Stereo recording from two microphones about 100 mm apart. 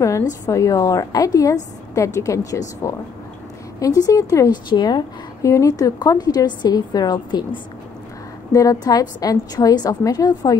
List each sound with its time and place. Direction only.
0.0 s a woman's voice: 35° left (ahead or behind)
5.4 s a woman's voice: 30° left (ahead or behind)